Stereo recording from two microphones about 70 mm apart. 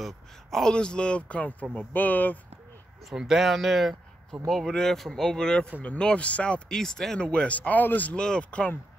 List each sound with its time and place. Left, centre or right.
0.0 s a man's voice: centre; by 2.3 s left
3.1 s speech: centre
6.7 s a man's voice: centre; by 8.2 s left
8.2 s speech: centre